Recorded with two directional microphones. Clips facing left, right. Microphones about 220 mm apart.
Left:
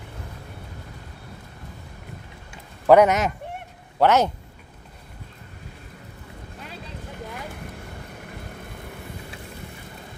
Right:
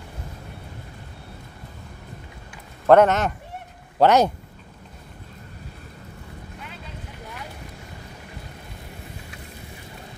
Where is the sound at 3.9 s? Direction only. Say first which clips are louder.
Right 2 dB; 15° right (ahead or behind).